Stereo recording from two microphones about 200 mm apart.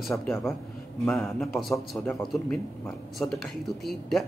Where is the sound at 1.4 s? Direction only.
Centre (ahead or behind).